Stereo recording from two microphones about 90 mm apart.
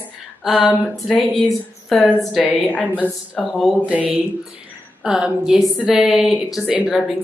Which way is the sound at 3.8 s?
15° right (ahead or behind).